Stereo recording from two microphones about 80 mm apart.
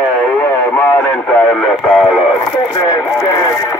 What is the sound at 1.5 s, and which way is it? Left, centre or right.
Radio, centre.